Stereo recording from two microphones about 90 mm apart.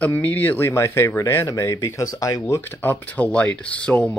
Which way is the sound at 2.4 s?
25° left (ahead or behind).